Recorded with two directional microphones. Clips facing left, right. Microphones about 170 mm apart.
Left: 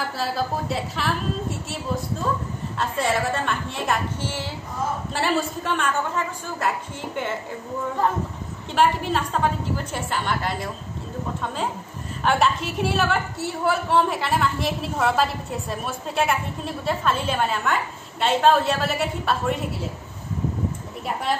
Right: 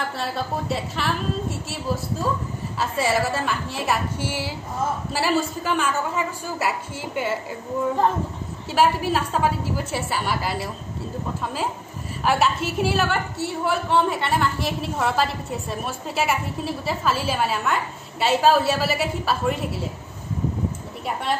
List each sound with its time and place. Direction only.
0.2 s a woman's voice: centre (ahead or behind)
2.8 s a woman's voice: 5° right (ahead or behind)
8.7 s a woman's voice: 5° right (ahead or behind)
12.3 s a woman's voice: 5° right (ahead or behind)